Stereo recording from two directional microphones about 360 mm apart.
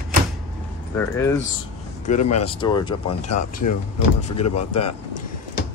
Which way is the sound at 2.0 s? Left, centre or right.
Centre.